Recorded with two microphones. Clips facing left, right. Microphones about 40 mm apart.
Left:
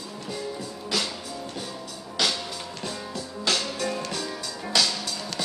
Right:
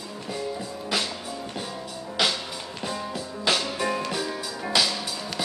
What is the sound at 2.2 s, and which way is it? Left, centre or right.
Music, centre.